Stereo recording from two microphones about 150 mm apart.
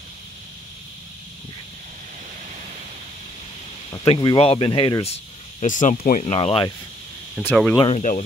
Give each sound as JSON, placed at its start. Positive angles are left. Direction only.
{"t": 3.9, "sound": "speech", "side_deg": 35}
{"t": 6.3, "sound": "speech", "side_deg": 40}
{"t": 7.4, "sound": "speech", "side_deg": 10}
{"t": 7.9, "sound": "speech", "side_deg": 55}